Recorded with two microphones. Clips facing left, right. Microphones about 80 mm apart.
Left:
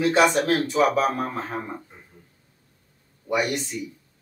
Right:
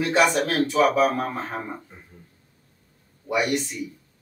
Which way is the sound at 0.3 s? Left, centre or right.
Centre.